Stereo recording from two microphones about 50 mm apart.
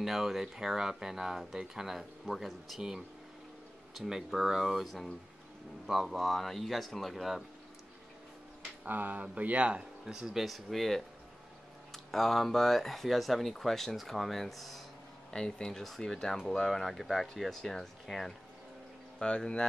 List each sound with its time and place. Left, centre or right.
0.0 s speech: centre
4.3 s speech: centre
8.8 s speech: right
9.2 s a man's voice: right
10.4 s speech: centre
15.3 s speech: centre
19.1 s speech: centre